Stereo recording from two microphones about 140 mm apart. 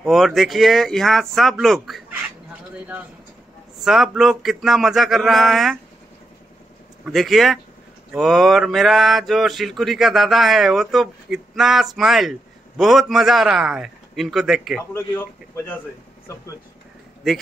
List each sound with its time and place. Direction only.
0.0 s mantra: centre (ahead or behind)
3.8 s mantra: centre (ahead or behind)
7.1 s mantra: centre (ahead or behind)
15.0 s a man's voice: 15° left (ahead or behind)